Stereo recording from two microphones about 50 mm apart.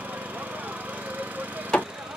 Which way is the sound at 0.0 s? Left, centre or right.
Right.